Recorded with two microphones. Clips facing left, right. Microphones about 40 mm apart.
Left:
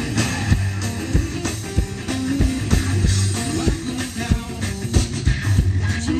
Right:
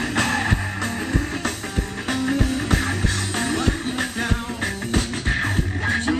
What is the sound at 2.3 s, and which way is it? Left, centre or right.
Music, right.